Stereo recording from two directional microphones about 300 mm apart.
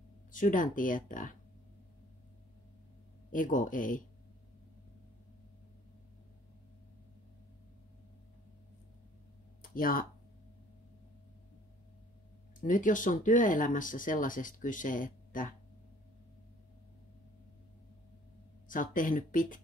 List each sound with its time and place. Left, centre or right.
0.3 s speech: left
3.3 s speech: left
9.6 s a sound: left
12.5 s speech: left
18.7 s speech: left